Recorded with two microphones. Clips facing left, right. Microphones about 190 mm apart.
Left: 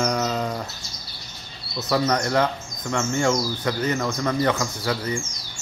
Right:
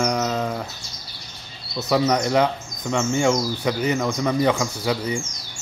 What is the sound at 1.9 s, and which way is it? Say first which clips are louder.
Speech: right 2 dB; 15° right (ahead or behind).